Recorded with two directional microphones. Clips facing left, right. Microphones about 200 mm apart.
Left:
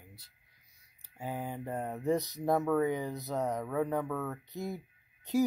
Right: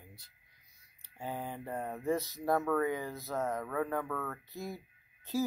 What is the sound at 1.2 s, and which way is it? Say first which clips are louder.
Speech: left 2 dB; 15° left (ahead or behind).